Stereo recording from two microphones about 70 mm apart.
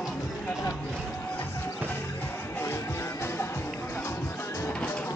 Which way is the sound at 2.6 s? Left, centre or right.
Left.